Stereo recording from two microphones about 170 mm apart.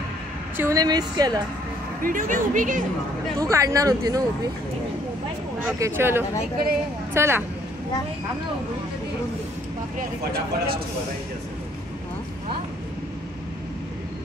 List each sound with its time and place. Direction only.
0.6 s speech: 20° right (ahead or behind)
2.0 s speech: 50° right (ahead or behind)
3.3 s speech: 20° right (ahead or behind)
5.8 s speech: 15° right (ahead or behind)
9.9 s speech: 65° right (ahead or behind)